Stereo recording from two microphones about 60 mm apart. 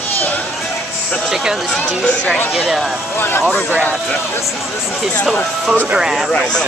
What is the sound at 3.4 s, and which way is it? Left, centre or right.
Speech, centre.